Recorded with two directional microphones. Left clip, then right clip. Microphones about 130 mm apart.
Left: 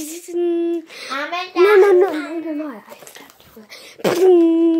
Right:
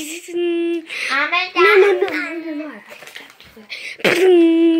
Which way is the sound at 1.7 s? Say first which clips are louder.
Left 3 dB; 40° left (ahead or behind).